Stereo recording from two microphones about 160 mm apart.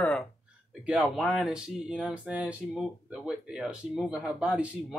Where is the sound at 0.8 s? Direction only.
5° right (ahead or behind).